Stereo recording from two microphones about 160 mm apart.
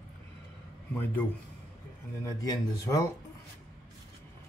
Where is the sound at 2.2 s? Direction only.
20° left (ahead or behind).